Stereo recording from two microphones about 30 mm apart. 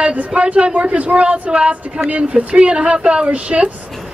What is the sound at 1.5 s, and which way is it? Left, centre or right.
Speech, right.